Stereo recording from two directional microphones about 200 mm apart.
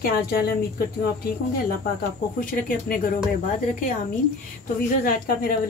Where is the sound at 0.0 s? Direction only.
50° left (ahead or behind).